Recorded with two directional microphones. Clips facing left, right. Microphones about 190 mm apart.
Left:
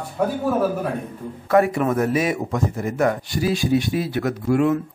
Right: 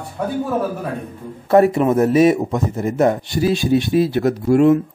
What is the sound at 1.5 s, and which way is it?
A man's voice, 25° right (ahead or behind).